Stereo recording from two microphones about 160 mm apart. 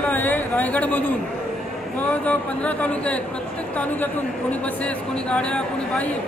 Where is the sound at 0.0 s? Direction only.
10° left (ahead or behind).